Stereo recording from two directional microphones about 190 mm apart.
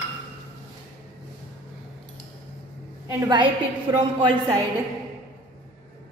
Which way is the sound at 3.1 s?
20° right (ahead or behind).